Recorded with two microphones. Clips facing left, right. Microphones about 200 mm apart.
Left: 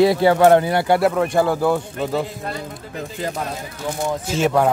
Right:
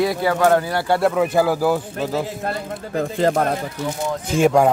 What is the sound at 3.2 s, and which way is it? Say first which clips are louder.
Speech: right 8 dB; 65° right (ahead or behind).